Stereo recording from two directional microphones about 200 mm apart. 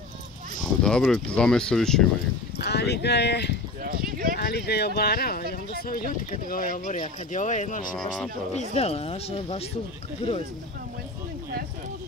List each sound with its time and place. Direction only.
0.6 s speech: 5° left (ahead or behind)
2.6 s speech: 55° left (ahead or behind)
3.8 s a sound: 45° right (ahead or behind)
4.4 s speech: 50° left (ahead or behind)
7.9 s speech: 5° left (ahead or behind)
8.5 s speech: 30° left (ahead or behind)